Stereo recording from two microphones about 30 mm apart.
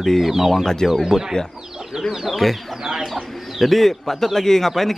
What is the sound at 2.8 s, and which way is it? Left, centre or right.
Speech, centre.